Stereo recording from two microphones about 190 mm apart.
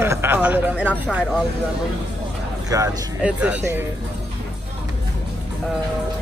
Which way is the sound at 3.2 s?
5° right (ahead or behind).